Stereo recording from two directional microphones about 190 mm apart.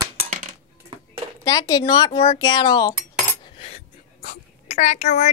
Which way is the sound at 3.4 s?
30° left (ahead or behind).